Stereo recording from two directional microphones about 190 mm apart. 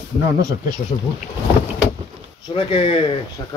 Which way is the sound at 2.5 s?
25° left (ahead or behind).